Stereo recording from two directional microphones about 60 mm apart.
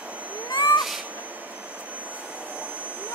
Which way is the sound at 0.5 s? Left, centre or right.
Left.